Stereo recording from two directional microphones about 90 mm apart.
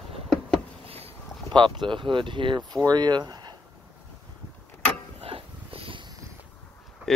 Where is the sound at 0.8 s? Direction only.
90° right.